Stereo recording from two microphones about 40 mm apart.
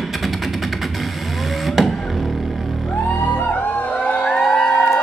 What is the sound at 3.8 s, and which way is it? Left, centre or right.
Music, left.